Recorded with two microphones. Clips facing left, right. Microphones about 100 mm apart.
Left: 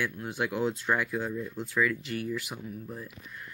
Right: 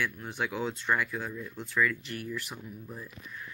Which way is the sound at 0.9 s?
15° left (ahead or behind).